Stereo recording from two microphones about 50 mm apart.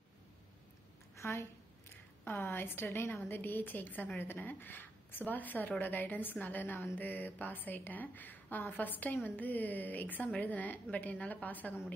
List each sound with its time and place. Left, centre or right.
1.1 s a woman's voice: left
2.5 s a woman's voice: left